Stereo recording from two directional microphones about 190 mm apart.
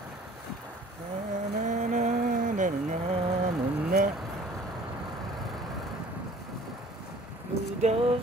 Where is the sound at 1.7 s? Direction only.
40° right (ahead or behind).